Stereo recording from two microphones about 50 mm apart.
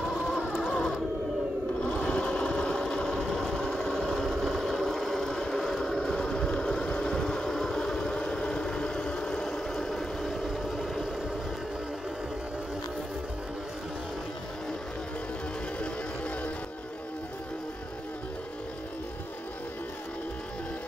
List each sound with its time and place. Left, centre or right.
0.7 s printer: centre
1.8 s sewing machine: left
3.9 s vehicle: centre
15.8 s music: left